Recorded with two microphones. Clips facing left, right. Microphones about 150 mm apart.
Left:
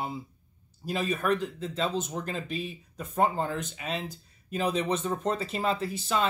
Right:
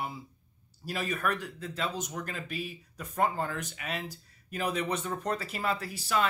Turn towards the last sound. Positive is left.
turn(degrees=25)  # may be behind; listen again after turning